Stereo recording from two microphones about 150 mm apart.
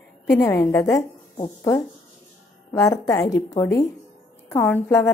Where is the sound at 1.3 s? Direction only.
35° left (ahead or behind).